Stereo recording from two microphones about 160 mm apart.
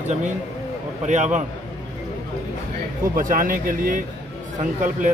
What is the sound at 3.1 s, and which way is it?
A man's voice, 60° right (ahead or behind).